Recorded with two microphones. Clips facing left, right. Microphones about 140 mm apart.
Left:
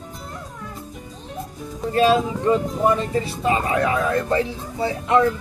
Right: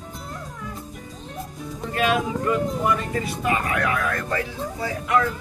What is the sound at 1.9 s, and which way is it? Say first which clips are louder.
Speech: left 5 dB; 30° left (ahead or behind).